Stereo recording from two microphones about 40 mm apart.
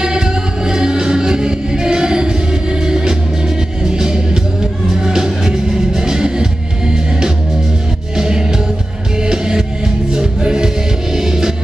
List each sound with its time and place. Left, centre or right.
0.0 s music: centre